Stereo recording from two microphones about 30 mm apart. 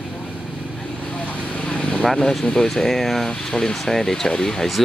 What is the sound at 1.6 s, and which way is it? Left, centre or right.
Vehicle, left.